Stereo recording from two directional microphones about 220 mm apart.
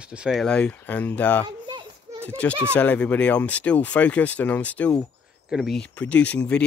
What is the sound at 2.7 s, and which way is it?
Speech, 5° left (ahead or behind).